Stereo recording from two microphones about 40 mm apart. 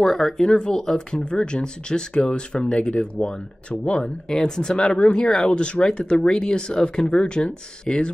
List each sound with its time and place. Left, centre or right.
0.0 s speech: centre; by 4.1 s left
4.3 s speech: centre